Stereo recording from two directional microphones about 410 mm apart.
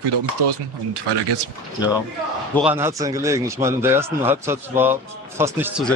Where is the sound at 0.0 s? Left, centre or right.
Right.